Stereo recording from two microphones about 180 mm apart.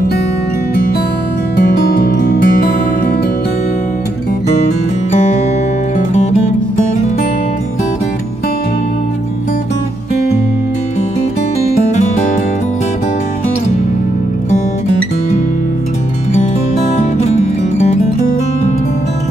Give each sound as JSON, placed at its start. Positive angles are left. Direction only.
{"t": 1.9, "sound": "music", "side_deg": 50}
{"t": 17.0, "sound": "music", "side_deg": 35}